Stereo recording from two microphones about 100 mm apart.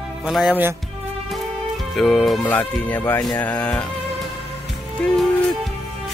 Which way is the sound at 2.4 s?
15° left (ahead or behind).